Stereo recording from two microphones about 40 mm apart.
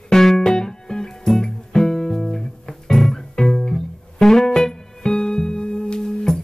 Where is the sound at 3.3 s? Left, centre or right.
Centre.